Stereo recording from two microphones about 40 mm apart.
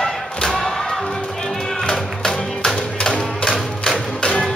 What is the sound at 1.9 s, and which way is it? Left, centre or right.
Music, centre.